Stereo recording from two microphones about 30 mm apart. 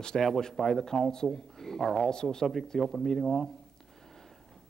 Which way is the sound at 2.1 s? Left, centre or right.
Left.